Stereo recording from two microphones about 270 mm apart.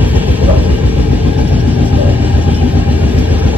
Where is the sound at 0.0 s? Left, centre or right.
Centre.